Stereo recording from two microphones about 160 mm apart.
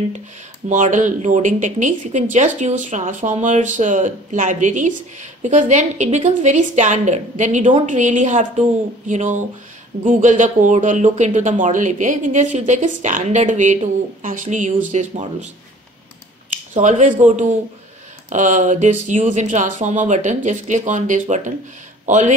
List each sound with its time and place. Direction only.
0.7 s speech: 50° right (ahead or behind)
16.7 s a man's voice: 50° right (ahead or behind)